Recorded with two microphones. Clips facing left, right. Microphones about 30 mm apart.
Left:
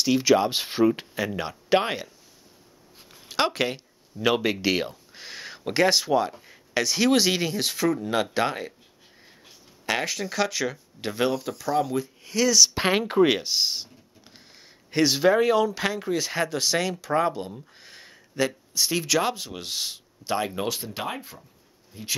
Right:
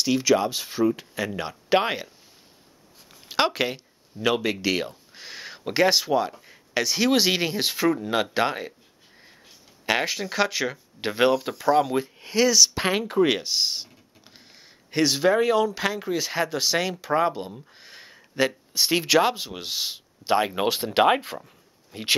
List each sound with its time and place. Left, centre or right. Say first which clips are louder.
0.2 s speech: left 1 dB; centre
0.5 s speech: left 2 dB; left
1.1 s speech: even; centre
3.3 s speech: right 1 dB; centre
9.8 s speech: right 2 dB; centre
12.4 s speech: left 1 dB; centre
12.7 s speech: left 1 dB; centre
13.2 s speech: even; centre
18.4 s speech: right 2 dB; right; by 20.0 s centre
20.2 s speech: right 5 dB; right
20.8 s speech: right 12 dB; right